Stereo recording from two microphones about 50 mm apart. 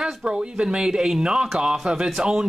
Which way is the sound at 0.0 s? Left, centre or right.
Centre.